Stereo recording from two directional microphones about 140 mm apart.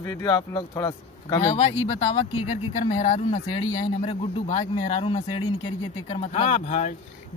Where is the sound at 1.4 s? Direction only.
50° left (ahead or behind).